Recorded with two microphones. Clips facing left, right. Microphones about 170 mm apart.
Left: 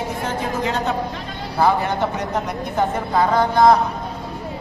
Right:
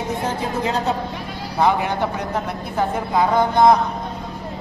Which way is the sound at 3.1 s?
5° right (ahead or behind).